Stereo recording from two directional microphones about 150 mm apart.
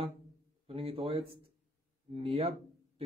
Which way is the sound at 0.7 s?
40° right (ahead or behind).